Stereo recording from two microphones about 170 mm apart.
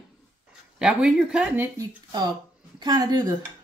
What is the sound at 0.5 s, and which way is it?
Speech, 5° right (ahead or behind).